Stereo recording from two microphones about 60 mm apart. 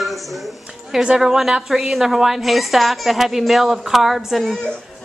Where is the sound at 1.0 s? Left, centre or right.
Centre.